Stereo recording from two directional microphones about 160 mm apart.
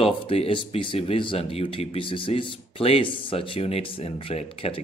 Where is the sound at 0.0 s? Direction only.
35° left (ahead or behind).